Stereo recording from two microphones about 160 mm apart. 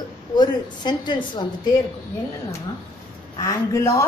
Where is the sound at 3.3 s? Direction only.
20° left (ahead or behind).